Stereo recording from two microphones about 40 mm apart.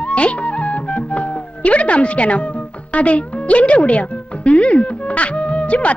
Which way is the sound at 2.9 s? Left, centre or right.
Left.